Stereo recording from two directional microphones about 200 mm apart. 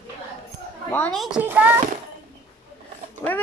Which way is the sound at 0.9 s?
5° left (ahead or behind).